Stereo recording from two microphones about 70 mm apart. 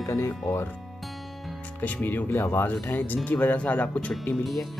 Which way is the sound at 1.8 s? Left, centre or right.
Left.